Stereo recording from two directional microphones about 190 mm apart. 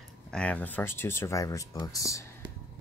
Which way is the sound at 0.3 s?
5° left (ahead or behind).